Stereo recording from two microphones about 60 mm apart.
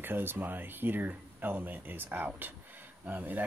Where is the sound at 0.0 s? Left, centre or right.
Right.